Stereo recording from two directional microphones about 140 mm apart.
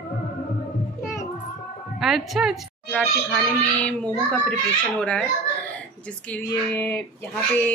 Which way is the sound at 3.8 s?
10° left (ahead or behind).